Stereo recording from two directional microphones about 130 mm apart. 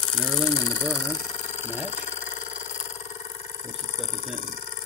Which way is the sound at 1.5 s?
60° left (ahead or behind).